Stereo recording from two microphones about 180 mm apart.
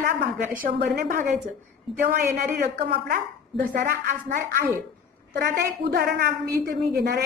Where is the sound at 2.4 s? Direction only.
55° right (ahead or behind).